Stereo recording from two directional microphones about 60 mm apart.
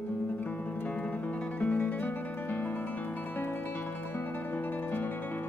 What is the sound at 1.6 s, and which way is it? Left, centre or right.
Guitar, left.